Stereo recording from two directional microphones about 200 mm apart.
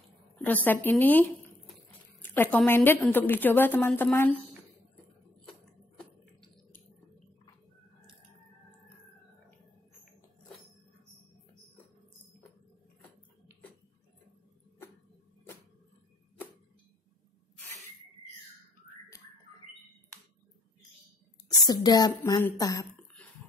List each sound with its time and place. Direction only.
0.4 s a woman's voice: 10° left (ahead or behind)
2.2 s a woman's voice: 10° left (ahead or behind)
5.5 s a sound: centre (ahead or behind)
21.5 s speech: 20° left (ahead or behind)